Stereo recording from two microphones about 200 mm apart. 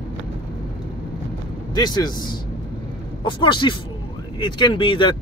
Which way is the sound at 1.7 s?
20° left (ahead or behind).